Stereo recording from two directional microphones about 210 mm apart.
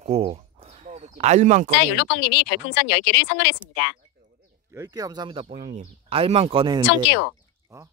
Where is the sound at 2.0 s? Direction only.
55° left (ahead or behind).